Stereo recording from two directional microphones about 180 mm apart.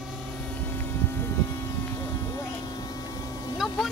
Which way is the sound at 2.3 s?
20° left (ahead or behind).